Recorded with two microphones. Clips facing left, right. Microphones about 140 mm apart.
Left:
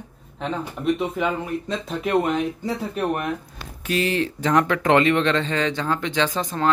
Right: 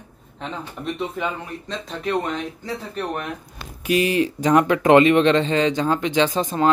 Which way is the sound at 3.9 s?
10° right (ahead or behind).